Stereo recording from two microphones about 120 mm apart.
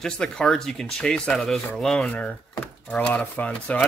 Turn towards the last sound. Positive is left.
turn(degrees=10)  # may be behind; listen again after turning